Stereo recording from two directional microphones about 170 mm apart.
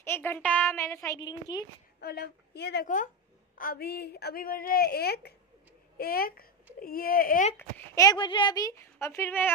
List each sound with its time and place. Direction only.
0.0 s a sound: 15° left (ahead or behind)
1.0 s a child's voice: 20° left (ahead or behind)
2.0 s a woman's voice: 70° left (ahead or behind)
3.5 s a woman's voice: 60° left (ahead or behind)
7.5 s a child's voice: 15° left (ahead or behind)
9.0 s a sound: 15° left (ahead or behind)